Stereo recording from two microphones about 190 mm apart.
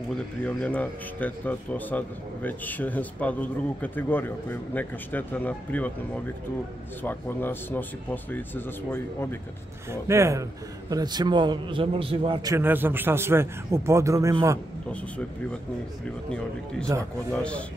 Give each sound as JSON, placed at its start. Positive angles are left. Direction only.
{"t": 0.4, "sound": "a man's voice", "side_deg": 5}
{"t": 7.0, "sound": "a man's voice", "side_deg": 10}
{"t": 9.8, "sound": "a man's voice", "side_deg": -15}
{"t": 14.9, "sound": "a man's voice", "side_deg": 5}
{"t": 16.3, "sound": "speech", "side_deg": 5}